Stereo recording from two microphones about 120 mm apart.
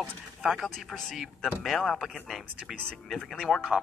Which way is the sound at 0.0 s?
Centre (ahead or behind).